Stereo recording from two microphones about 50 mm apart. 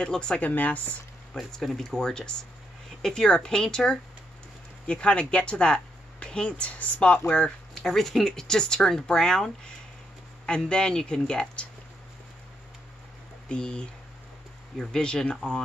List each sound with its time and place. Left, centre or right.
0.0 s speech: centre
0.4 s speech: left
1.3 s speech: centre
7.8 s speech: centre
13.5 s speech: centre